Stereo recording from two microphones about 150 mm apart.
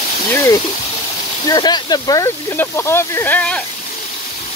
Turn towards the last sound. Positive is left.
turn(degrees=10)  # may be behind; listen again after turning